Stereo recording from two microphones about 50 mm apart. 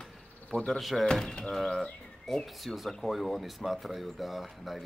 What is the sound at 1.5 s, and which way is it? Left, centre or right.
Speech, centre.